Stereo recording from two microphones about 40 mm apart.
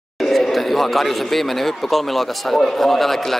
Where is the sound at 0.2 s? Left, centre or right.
Centre.